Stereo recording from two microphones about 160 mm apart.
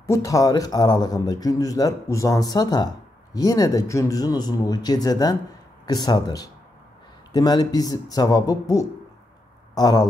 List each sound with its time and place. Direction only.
0.0 s a man's voice: 20° left (ahead or behind)